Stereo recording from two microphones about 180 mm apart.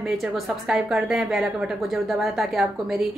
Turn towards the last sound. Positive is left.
turn(degrees=0)  # may be behind; listen again after turning